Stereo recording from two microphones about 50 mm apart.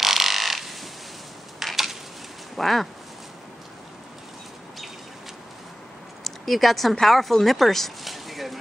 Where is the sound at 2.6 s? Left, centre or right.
Centre.